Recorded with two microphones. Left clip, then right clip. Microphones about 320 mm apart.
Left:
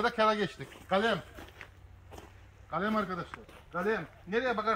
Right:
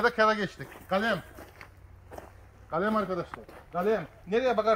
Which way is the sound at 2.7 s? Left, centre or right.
Centre.